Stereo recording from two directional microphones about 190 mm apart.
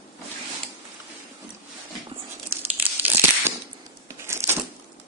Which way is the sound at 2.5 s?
10° right (ahead or behind).